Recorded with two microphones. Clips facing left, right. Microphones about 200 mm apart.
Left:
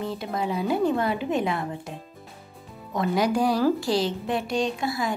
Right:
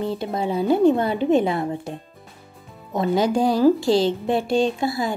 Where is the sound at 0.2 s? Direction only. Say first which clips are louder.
Right 4 dB; 30° right (ahead or behind).